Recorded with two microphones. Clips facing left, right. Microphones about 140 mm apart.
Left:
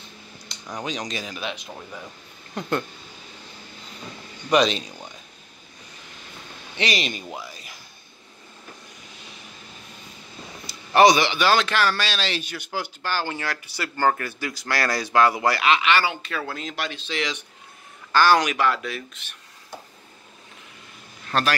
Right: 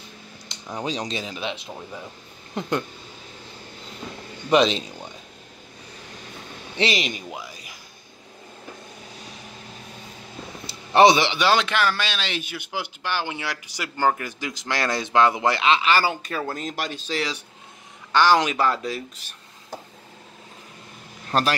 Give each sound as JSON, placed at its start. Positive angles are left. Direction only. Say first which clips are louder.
{"t": 0.5, "sound": "a sound", "louder": "right 1 dB", "side_deg": -20}
{"t": 0.8, "sound": "a man's voice", "louder": "right 3 dB", "side_deg": -30}
{"t": 1.7, "sound": "speech", "louder": "right 2 dB", "side_deg": -10}
{"t": 4.5, "sound": "a man's voice", "louder": "right 1 dB", "side_deg": -25}
{"t": 6.8, "sound": "a sound", "louder": "right 2 dB", "side_deg": -20}
{"t": 10.7, "sound": "a man's voice", "louder": "right 1 dB", "side_deg": -25}
{"t": 18.1, "sound": "speech", "louder": "even", "side_deg": -20}